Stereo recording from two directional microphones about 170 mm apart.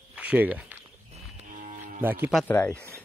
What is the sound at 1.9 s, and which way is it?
Speech, 10° right (ahead or behind).